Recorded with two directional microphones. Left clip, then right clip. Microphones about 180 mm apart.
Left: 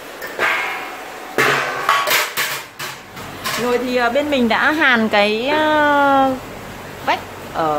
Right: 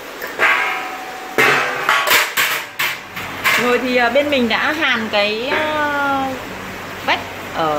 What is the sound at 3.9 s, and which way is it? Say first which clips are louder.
A woman's voice: right 2 dB; 5° left (ahead or behind).